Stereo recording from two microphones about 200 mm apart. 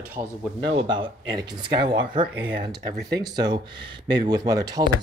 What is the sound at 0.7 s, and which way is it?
Speech, 25° right (ahead or behind).